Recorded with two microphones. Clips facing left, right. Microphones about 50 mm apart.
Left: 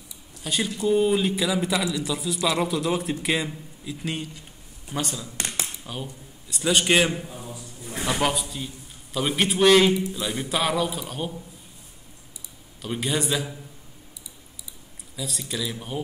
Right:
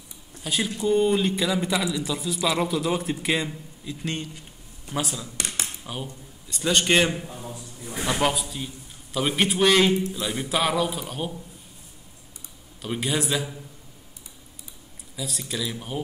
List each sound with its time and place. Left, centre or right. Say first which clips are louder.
0.4 s speech: even; centre
6.4 s a man's voice: left 1 dB; centre
12.8 s speech: even; centre
15.1 s speech: even; centre